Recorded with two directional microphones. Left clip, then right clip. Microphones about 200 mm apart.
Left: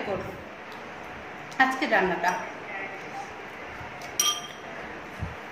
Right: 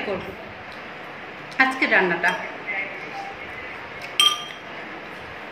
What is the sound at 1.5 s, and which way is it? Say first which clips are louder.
Speech: right 4 dB; centre (ahead or behind).